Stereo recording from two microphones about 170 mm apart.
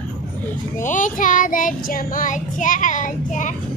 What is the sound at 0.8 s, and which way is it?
Child singing, 50° left (ahead or behind).